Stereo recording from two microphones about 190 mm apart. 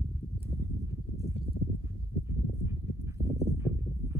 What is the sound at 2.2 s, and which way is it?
Horse, 15° right (ahead or behind).